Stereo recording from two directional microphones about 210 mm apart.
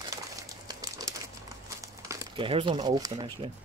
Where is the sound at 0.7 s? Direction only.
15° right (ahead or behind).